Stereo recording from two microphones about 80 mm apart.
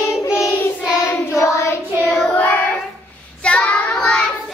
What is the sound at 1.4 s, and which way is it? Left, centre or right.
Child singing, left.